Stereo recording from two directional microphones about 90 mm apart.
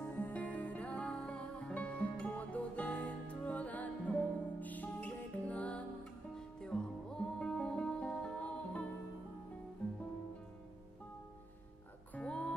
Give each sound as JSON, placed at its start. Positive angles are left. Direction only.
{"t": 0.0, "sound": "music", "side_deg": 20}
{"t": 12.1, "sound": "music", "side_deg": 10}